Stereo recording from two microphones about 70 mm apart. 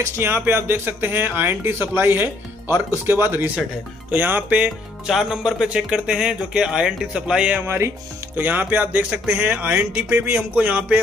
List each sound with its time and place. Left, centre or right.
0.0 s speech: right
5.0 s speech: centre
7.6 s speech: right
8.4 s speech: right